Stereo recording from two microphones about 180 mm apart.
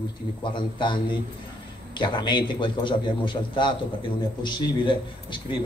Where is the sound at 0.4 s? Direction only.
25° left (ahead or behind).